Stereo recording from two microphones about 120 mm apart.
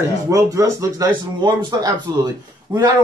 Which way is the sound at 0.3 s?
30° right (ahead or behind).